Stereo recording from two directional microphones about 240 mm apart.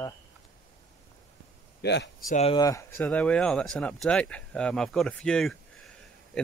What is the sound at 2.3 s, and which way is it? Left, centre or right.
Speech, left.